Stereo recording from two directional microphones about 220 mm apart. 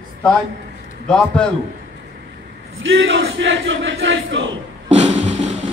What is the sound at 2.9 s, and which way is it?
Battle cry, 55° right (ahead or behind).